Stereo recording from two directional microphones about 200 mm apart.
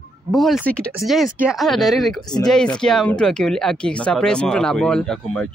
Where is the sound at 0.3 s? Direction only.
Centre (ahead or behind).